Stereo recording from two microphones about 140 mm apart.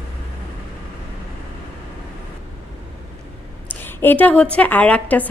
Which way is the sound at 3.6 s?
15° left (ahead or behind).